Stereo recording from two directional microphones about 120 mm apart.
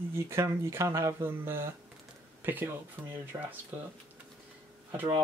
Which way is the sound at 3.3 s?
30° right (ahead or behind).